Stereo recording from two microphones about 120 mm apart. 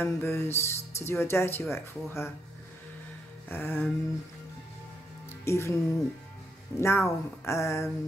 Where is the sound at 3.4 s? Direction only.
20° left (ahead or behind).